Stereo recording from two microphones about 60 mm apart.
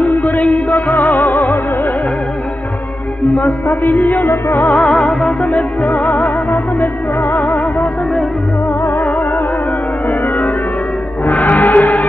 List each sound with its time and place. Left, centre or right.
0.5 s music: centre
3.8 s music: left
4.3 s music: left
4.6 s music: centre
10.2 s music: centre
11.4 s music: left